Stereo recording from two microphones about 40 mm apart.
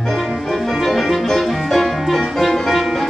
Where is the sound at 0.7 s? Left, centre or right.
Centre.